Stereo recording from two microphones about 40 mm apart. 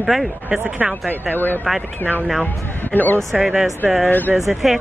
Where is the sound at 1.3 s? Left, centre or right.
Left.